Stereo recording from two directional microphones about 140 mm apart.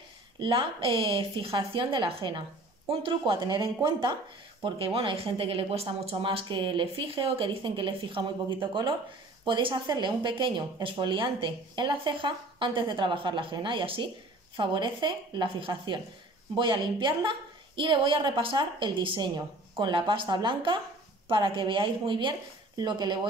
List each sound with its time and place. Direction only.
0.4 s speech: 40° right (ahead or behind)